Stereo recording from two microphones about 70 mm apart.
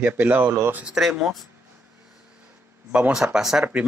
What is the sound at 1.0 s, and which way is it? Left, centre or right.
Speech, centre.